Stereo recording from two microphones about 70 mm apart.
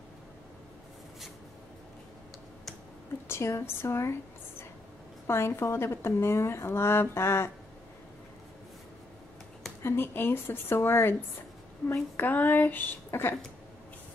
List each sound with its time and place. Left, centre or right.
3.3 s a woman's voice: left
5.2 s a woman's voice: left
9.8 s a woman's voice: left